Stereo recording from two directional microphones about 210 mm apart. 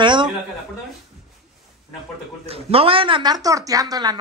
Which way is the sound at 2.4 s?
25° right (ahead or behind).